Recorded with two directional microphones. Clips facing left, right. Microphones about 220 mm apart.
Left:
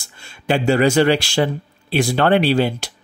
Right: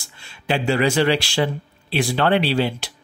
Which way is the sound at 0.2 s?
45° left (ahead or behind).